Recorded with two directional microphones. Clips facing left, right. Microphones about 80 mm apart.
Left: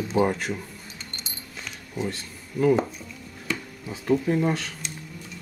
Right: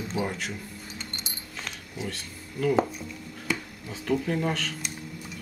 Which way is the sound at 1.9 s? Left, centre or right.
Left.